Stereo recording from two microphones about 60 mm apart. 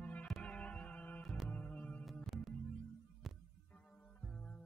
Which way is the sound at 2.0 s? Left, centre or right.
Centre.